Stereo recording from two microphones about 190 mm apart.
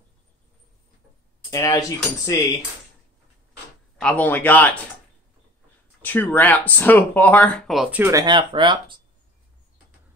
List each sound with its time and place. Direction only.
1.5 s speech: 15° left (ahead or behind)
4.0 s speech: 10° left (ahead or behind)
6.0 s speech: 10° left (ahead or behind)
8.0 s speech: 20° right (ahead or behind)